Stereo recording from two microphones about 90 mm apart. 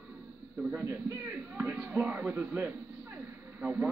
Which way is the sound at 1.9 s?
20° right (ahead or behind).